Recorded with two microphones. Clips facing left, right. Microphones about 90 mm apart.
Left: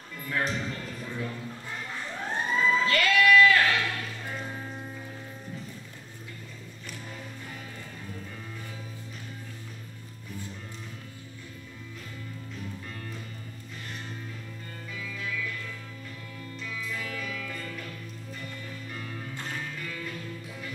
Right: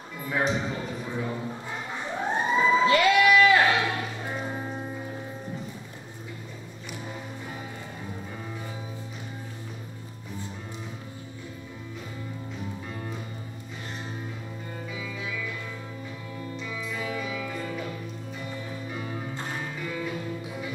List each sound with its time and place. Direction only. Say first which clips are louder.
0.6 s a sound: right 4 dB; 15° right (ahead or behind)
14.9 s music: even; 10° right (ahead or behind)
16.5 s music: right 1 dB; 5° right (ahead or behind)